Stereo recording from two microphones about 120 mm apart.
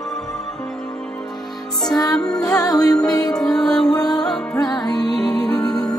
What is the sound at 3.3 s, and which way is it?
Music, 5° left (ahead or behind).